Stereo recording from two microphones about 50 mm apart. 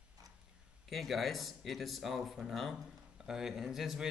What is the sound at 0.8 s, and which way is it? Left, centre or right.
A man's voice, centre.